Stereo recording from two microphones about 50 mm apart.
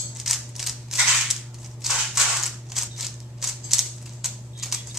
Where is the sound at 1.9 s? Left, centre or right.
Centre.